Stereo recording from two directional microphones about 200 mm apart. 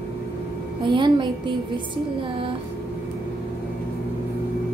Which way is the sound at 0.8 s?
25° right (ahead or behind).